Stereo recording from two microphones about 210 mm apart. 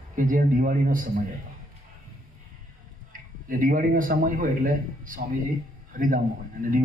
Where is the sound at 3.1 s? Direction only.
40° right (ahead or behind).